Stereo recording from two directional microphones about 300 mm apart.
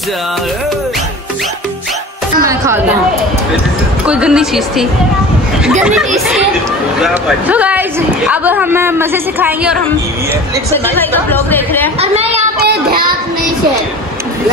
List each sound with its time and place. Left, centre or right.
2.4 s chatter: centre
4.0 s speech: centre
6.1 s a man's voice: centre
10.7 s speech: centre
12.0 s a sound: right
12.6 s child singing: right